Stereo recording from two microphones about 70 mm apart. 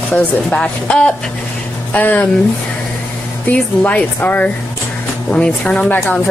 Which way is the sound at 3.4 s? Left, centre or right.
Left.